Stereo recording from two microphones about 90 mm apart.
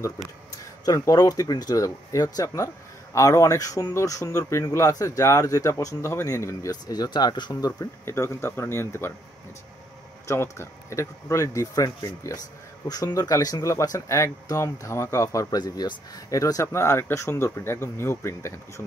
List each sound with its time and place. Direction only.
0.8 s speech: 40° left (ahead or behind)
6.7 s speech: 50° left (ahead or behind)
7.8 s speech: 30° left (ahead or behind)
10.2 s speech: 30° left (ahead or behind)